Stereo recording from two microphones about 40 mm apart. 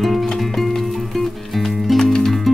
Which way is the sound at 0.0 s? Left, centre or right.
Centre.